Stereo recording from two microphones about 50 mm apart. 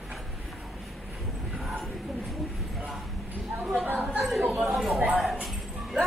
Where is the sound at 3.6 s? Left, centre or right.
Right.